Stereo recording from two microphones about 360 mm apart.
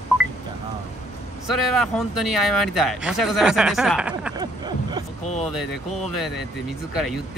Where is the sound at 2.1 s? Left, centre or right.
Left.